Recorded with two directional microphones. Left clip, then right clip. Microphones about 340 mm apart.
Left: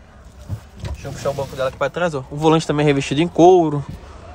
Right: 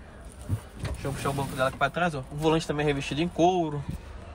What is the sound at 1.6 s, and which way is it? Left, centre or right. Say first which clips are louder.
Speech: left 5 dB; centre.